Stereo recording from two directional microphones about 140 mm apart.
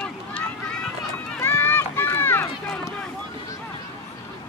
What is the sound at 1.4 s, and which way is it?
Run, 15° left (ahead or behind).